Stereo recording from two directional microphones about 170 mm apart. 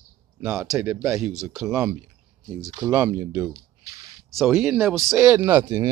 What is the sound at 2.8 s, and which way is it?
Speech, 10° right (ahead or behind).